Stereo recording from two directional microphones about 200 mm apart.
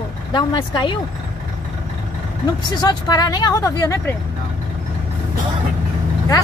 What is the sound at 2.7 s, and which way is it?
Speech, 20° left (ahead or behind).